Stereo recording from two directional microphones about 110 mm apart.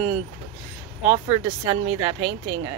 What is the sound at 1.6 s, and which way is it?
Speech, 25° right (ahead or behind).